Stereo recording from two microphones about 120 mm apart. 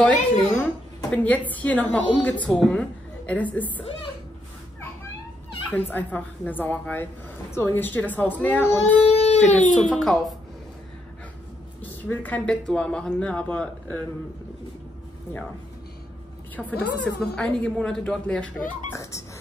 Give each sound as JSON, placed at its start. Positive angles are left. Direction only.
{"t": 0.0, "sound": "a woman's voice", "side_deg": 15}
{"t": 5.9, "sound": "a woman's voice", "side_deg": 15}
{"t": 9.5, "sound": "speech", "side_deg": 90}
{"t": 9.8, "sound": "a woman's voice", "side_deg": 5}
{"t": 11.8, "sound": "a woman's voice", "side_deg": 15}
{"t": 16.5, "sound": "a woman's voice", "side_deg": 10}